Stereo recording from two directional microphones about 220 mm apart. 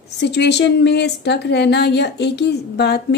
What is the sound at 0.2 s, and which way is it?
Speech, 50° left (ahead or behind).